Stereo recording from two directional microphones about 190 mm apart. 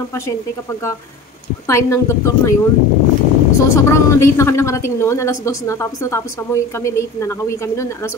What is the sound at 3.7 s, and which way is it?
A woman's voice, 15° left (ahead or behind).